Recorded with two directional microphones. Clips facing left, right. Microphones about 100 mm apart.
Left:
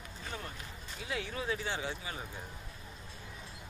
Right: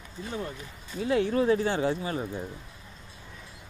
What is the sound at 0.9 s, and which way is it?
Speech, 45° right (ahead or behind).